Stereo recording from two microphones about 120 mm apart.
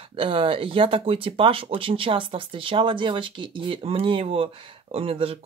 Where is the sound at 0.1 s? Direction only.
50° right (ahead or behind).